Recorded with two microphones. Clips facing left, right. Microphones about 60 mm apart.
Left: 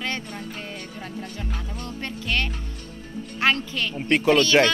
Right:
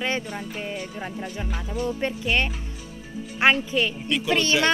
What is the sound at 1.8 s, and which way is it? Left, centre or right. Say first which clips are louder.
Speech: right 6 dB; centre.